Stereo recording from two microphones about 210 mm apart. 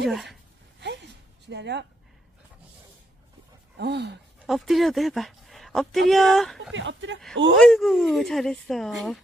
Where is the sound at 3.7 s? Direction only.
55° right (ahead or behind).